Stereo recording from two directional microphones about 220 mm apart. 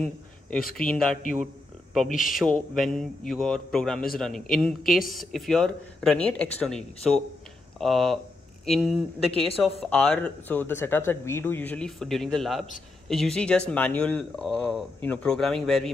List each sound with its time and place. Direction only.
0.7 s a man's voice: 5° left (ahead or behind)
2.0 s speech: 40° left (ahead or behind)
2.3 s a man's voice: centre (ahead or behind)